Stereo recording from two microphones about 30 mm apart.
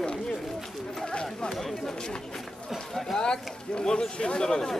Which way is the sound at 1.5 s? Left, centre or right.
Centre.